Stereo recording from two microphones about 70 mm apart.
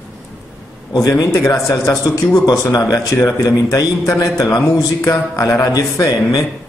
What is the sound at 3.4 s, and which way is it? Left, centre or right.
A man's voice, left.